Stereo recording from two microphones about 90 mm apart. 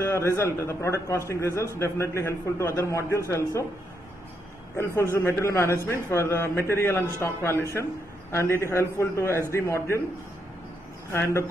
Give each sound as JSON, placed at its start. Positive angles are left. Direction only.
{"t": 0.0, "sound": "a man's voice", "side_deg": 30}
{"t": 4.7, "sound": "a man's voice", "side_deg": 30}
{"t": 11.1, "sound": "a man's voice", "side_deg": 30}